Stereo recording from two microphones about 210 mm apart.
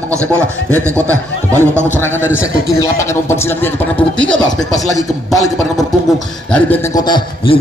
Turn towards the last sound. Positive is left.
turn(degrees=20)  # may be behind; listen again after turning